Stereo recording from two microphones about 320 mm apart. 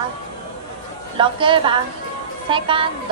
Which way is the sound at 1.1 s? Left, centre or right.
Centre.